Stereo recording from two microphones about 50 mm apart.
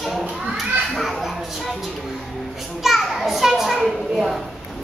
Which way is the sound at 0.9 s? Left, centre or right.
Centre.